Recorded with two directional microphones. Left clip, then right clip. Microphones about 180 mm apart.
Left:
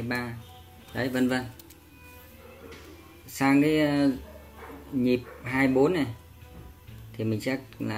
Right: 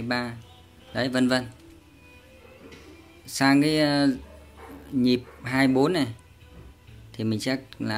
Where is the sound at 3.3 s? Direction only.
30° right (ahead or behind).